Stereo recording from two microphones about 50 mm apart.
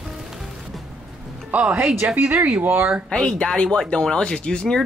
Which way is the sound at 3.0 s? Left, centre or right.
Centre.